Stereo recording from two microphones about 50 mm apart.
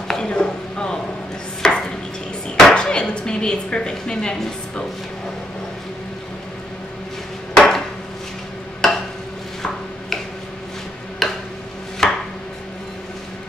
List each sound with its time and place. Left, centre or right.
0.1 s a sound: centre
2.7 s speech: centre
7.5 s hammer: centre
8.8 s stir: centre
11.2 s a sound: centre
12.0 s chopping: centre